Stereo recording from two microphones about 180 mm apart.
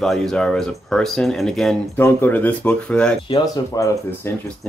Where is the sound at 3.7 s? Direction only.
20° left (ahead or behind).